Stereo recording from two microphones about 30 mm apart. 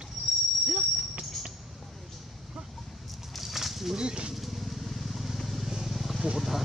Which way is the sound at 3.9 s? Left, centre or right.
Right.